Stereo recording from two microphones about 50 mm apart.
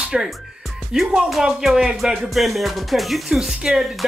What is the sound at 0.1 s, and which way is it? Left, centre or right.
Speech, centre.